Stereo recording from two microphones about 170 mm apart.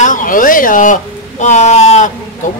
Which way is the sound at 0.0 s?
50° left (ahead or behind).